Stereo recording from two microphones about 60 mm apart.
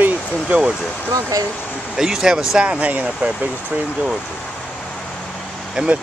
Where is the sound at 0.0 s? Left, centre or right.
Right.